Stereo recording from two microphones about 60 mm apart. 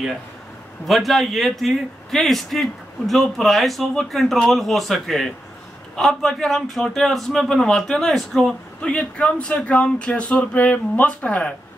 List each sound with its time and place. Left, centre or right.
0.8 s a man's voice: centre; by 11.5 s left